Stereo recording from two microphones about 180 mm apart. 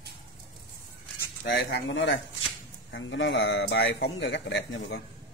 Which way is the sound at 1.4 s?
70° left (ahead or behind).